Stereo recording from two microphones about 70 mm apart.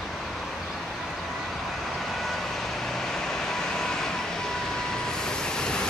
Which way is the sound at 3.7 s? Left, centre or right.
Centre.